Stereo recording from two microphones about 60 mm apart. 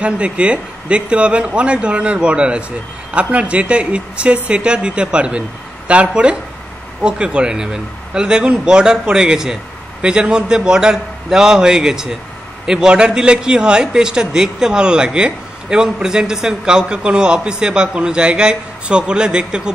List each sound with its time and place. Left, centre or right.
0.0 s a man's voice: right